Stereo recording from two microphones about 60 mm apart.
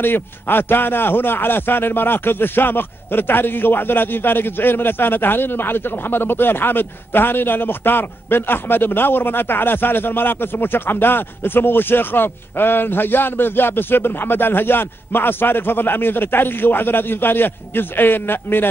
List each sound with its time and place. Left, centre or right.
0.0 s a man's voice: left